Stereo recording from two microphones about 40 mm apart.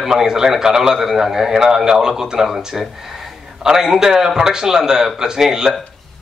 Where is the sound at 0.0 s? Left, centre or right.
Centre.